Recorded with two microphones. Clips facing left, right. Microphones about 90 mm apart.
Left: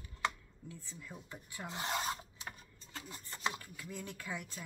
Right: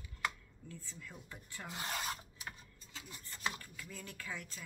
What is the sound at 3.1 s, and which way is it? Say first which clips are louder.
Chopping: left 2 dB; 25° left (ahead or behind).